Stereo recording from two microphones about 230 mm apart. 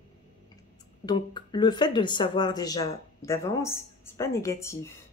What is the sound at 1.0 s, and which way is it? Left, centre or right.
Speech, centre.